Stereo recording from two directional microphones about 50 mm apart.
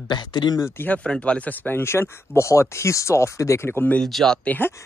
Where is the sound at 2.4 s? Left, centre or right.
Left.